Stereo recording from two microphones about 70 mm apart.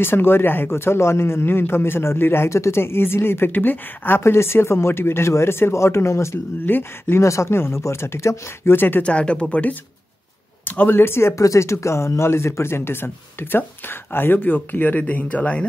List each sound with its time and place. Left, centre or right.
0.0 s speech: left
6.6 s speech: left
8.7 s speech: left
9.0 s speech: centre